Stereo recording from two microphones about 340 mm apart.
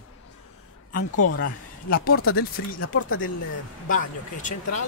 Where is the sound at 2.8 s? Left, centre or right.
Left.